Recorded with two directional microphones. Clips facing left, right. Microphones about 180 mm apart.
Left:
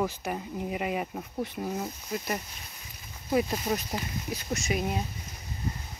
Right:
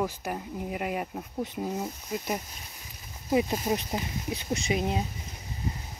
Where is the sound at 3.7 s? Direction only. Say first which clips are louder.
Right 1 dB; 25° right (ahead or behind).